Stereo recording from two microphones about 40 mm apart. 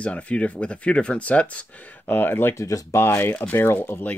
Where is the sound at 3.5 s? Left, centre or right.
Left.